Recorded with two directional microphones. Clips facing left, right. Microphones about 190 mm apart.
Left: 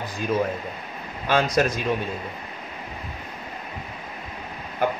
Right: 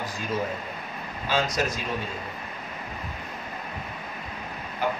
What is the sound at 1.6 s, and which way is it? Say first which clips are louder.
Speech: left 5 dB; 60° left (ahead or behind).